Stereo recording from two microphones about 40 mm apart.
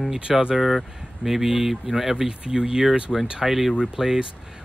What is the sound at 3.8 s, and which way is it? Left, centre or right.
Speech, centre.